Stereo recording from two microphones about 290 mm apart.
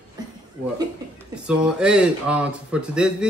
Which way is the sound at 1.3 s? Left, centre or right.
Centre.